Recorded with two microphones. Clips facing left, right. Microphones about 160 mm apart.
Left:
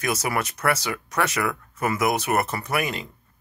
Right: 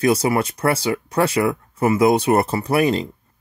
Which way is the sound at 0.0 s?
30° right (ahead or behind).